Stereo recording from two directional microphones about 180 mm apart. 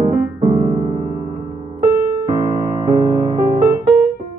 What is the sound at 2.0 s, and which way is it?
Music, 20° right (ahead or behind).